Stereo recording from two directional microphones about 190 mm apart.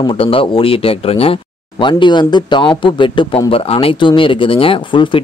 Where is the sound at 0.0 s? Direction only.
30° left (ahead or behind).